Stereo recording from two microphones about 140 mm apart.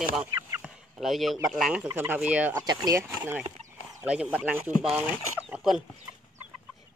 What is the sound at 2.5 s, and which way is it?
Speech, 30° right (ahead or behind).